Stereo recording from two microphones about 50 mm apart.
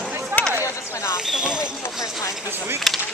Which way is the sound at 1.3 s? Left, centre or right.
Centre.